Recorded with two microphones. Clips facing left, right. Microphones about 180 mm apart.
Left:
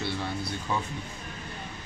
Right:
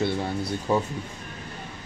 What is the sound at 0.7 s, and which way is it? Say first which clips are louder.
Speech: right 8 dB; 40° right (ahead or behind).